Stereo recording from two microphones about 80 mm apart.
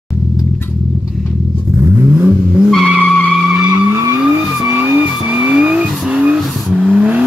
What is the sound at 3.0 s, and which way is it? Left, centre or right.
Vehicle, centre.